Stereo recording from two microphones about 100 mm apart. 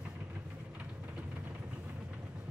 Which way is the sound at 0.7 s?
15° right (ahead or behind).